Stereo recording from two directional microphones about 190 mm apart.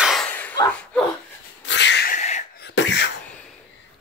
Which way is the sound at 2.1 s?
35° left (ahead or behind).